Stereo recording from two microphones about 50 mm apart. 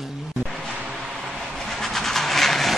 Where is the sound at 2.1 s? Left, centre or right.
Centre.